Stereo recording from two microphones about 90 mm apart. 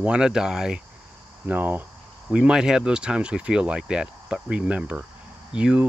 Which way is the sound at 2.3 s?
10° right (ahead or behind).